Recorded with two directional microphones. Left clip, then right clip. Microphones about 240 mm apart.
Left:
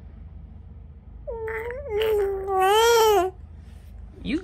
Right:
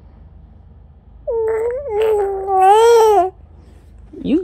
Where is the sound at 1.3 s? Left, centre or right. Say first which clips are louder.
Right 13 dB; centre.